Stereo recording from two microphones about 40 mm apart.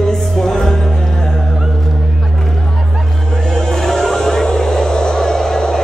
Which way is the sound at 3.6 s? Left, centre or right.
Centre.